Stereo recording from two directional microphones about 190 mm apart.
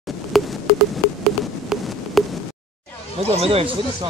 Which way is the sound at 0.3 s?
Centre (ahead or behind).